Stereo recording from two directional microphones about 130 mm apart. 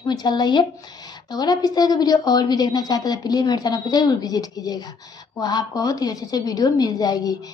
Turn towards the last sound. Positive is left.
turn(degrees=30)  # may be behind; listen again after turning